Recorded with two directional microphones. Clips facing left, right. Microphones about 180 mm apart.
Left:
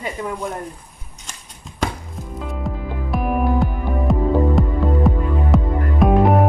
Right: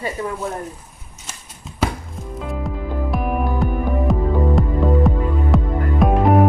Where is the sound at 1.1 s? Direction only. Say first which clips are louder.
Right 2 dB; 5° right (ahead or behind).